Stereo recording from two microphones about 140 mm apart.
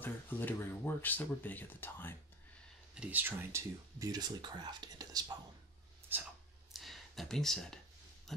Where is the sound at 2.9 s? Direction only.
10° right (ahead or behind); by 5.3 s 30° right (ahead or behind).